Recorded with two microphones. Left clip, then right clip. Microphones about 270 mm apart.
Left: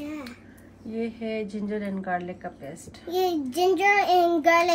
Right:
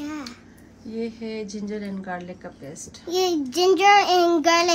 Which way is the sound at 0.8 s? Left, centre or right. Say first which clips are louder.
Even; centre.